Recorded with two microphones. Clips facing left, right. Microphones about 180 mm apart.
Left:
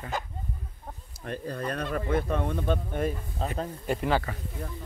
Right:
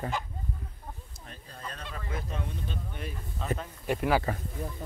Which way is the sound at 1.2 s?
70° left (ahead or behind).